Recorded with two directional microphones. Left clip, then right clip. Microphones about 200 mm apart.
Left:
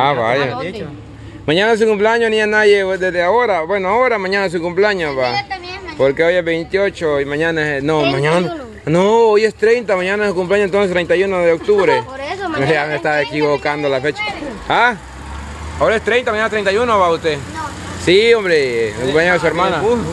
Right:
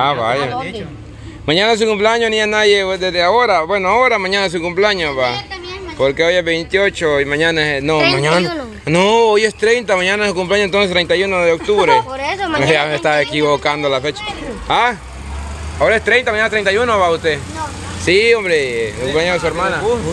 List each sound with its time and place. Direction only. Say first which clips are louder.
0.0 s a man's voice: left 1 dB; 20° left (ahead or behind)
12.2 s a sound: right 3 dB; 45° right (ahead or behind)
12.6 s a man's voice: right 1 dB; 5° left (ahead or behind); by 19.5 s 25° left (ahead or behind)